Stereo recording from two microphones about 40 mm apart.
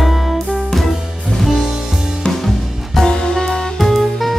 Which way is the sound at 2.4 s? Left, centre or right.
Centre.